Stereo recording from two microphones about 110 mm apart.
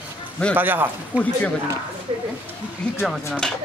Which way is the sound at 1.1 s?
15° left (ahead or behind).